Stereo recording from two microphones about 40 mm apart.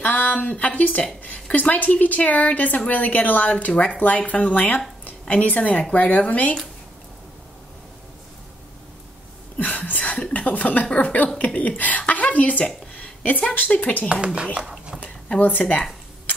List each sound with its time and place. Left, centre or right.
0.0 s a woman's voice: left
9.8 s a woman's voice: left
12.1 s a sound: left
13.7 s a woman's voice: left
14.2 s speech: right
15.0 s a sound: left
15.4 s a woman's voice: left